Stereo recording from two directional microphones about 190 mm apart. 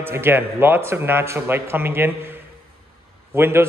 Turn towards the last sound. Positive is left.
turn(degrees=-10)  # may be behind; listen again after turning